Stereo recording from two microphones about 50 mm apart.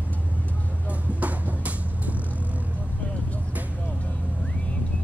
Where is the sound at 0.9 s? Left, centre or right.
Right.